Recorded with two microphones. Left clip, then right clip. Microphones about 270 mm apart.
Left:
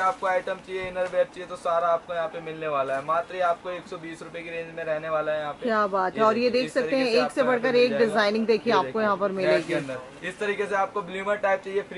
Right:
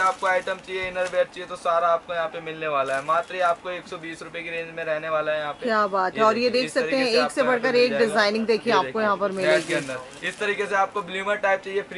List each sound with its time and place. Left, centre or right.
0.0 s speech: centre
5.9 s speech: centre
6.1 s speech: centre